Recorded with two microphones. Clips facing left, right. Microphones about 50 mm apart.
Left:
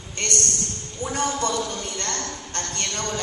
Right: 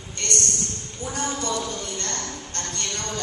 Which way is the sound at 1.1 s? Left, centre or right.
Left.